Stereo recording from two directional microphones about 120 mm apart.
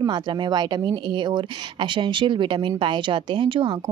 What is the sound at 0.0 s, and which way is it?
A woman's voice, 40° right (ahead or behind).